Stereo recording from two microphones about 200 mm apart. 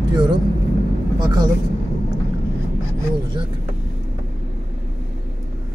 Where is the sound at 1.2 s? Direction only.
20° right (ahead or behind).